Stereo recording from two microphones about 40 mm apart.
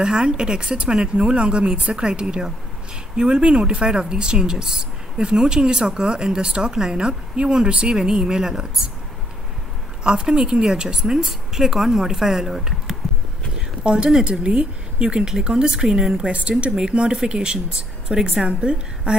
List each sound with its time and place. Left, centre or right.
0.0 s speech: right
10.0 s speech: centre
13.6 s a sound: right
14.4 s speech: right
16.2 s speech: right